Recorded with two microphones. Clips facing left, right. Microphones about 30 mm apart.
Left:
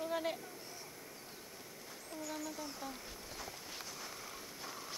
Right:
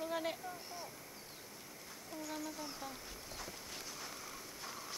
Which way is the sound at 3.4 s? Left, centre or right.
Centre.